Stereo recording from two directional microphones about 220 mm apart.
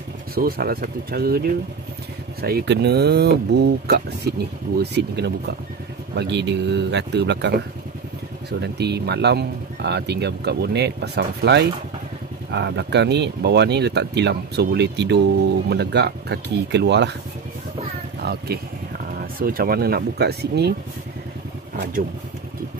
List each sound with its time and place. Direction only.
0.3 s speech: 40° right (ahead or behind)
18.2 s speech: 45° right (ahead or behind)